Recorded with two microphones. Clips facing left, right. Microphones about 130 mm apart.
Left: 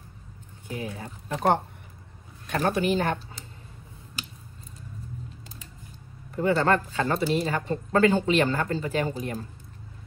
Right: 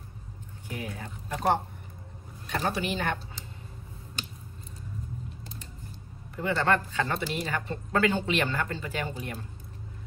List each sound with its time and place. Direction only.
0.7 s speech: 30° left (ahead or behind)
2.4 s a woman's voice: 50° left (ahead or behind)
6.3 s speech: 40° left (ahead or behind)